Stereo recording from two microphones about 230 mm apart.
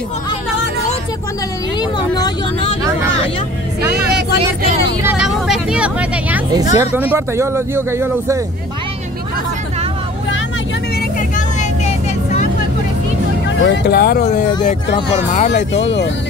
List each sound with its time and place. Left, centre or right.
1.8 s vehicle: centre
5.0 s vehicle: centre
6.5 s speech: centre
11.1 s vehicle: left
13.6 s speech: left
15.0 s speech: left